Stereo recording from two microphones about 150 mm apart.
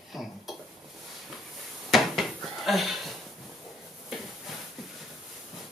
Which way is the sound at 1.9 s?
Centre (ahead or behind).